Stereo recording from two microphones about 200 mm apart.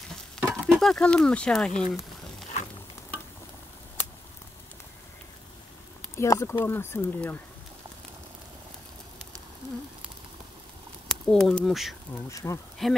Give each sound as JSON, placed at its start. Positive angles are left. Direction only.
{"t": 0.4, "sound": "speech", "side_deg": 0}
{"t": 6.1, "sound": "speech", "side_deg": 15}
{"t": 11.1, "sound": "speech", "side_deg": 0}
{"t": 12.3, "sound": "speech", "side_deg": 15}
{"t": 12.8, "sound": "speech", "side_deg": 0}